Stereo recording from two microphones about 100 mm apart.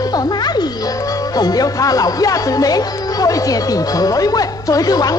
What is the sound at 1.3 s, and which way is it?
Speech, 40° left (ahead or behind).